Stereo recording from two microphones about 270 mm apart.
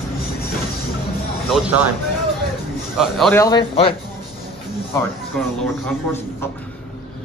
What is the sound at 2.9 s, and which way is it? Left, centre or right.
Speech, centre.